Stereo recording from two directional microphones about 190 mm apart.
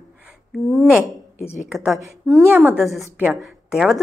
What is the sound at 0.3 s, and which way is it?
Speech, centre (ahead or behind).